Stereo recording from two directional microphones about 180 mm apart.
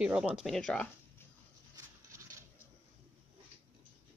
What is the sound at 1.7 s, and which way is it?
Patter, 15° right (ahead or behind).